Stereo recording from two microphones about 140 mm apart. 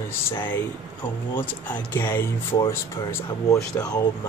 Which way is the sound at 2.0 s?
15° left (ahead or behind).